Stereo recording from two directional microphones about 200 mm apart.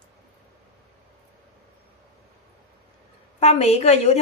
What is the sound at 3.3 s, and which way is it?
Speech, 35° left (ahead or behind).